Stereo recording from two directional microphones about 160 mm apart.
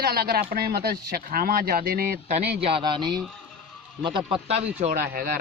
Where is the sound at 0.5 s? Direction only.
85° right.